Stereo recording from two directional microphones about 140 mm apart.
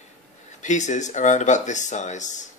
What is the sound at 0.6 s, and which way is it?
Speech, 60° left (ahead or behind).